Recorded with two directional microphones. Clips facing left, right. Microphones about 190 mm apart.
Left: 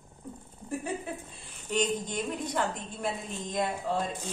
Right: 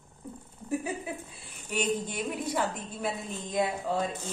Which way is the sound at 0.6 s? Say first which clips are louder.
Right 2 dB; 5° right (ahead or behind).